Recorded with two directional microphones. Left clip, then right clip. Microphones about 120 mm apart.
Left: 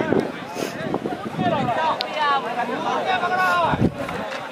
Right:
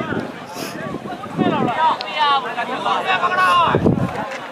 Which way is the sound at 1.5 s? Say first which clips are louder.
Right 4 dB; 35° right (ahead or behind).